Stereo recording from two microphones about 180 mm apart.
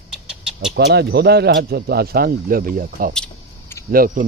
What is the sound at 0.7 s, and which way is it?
Speech, 65° right (ahead or behind).